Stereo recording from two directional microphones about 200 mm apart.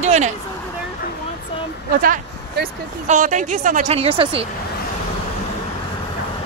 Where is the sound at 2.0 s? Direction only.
40° right (ahead or behind).